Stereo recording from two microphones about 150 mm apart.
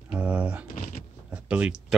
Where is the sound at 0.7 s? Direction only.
60° left (ahead or behind).